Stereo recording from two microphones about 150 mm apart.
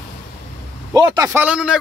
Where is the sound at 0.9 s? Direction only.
20° right (ahead or behind).